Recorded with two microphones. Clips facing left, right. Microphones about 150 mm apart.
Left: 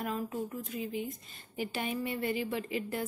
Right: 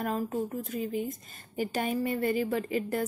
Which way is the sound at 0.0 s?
40° right (ahead or behind).